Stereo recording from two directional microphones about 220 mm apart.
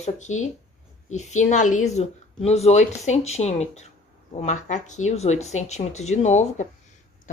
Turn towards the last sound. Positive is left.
turn(degrees=30)  # may be behind; listen again after turning